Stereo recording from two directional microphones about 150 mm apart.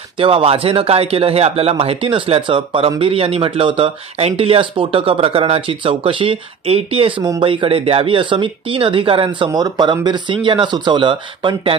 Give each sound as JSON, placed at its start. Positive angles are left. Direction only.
{"t": 0.2, "sound": "speech", "side_deg": -35}